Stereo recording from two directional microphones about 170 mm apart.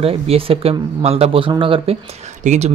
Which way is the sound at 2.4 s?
45° right (ahead or behind).